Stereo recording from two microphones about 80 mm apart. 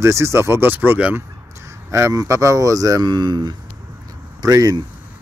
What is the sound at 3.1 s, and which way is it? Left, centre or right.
Speech, right.